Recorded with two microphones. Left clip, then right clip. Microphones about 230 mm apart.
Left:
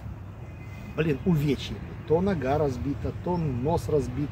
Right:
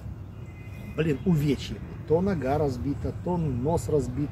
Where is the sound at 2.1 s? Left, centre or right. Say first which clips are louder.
Even; centre.